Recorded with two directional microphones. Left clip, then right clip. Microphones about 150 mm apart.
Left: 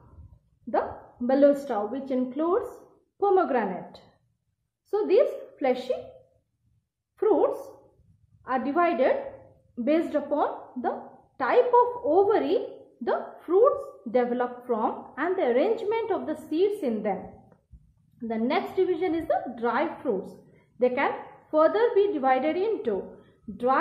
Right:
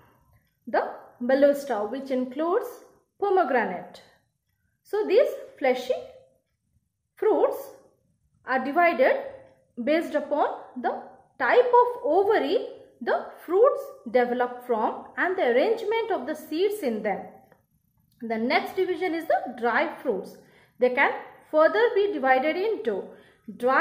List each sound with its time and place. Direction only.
0.7 s speech: centre (ahead or behind)
7.2 s a sound: centre (ahead or behind)
8.5 s speech: 5° right (ahead or behind)
18.2 s speech: 5° right (ahead or behind)